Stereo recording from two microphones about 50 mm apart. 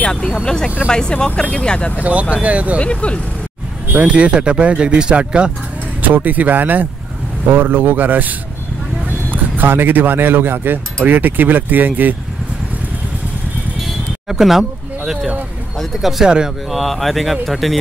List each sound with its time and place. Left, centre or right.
0.0 s speech: centre
2.0 s speech: right
2.8 s speech: left
3.9 s speech: right
6.0 s speech: right
14.3 s speech: centre
16.3 s speech: centre
16.7 s speech: centre